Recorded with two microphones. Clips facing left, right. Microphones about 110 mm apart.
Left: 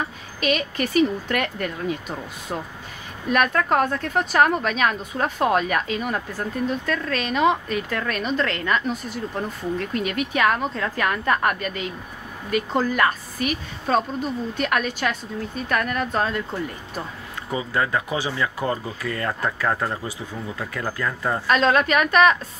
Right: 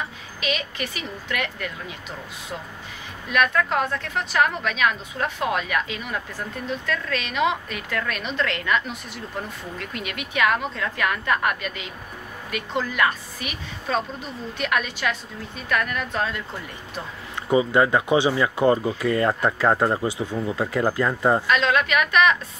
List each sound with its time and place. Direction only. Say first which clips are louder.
0.4 s speech: left 5 dB; 45° left (ahead or behind)
3.3 s a woman's voice: left 2 dB; 40° left (ahead or behind)
17.5 s speech: right 6 dB; 25° right (ahead or behind)
21.5 s a woman's voice: left 2 dB; 40° left (ahead or behind)